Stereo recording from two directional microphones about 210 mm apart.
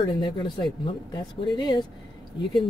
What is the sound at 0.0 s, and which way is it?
Speech, 20° left (ahead or behind).